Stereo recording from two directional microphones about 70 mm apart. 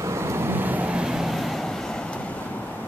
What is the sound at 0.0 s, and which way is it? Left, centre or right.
Vehicle, right.